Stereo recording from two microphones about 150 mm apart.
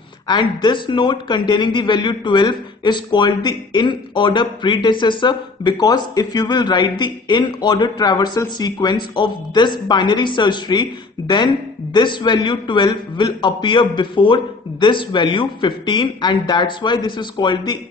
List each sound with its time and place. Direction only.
0.3 s speech: 30° left (ahead or behind)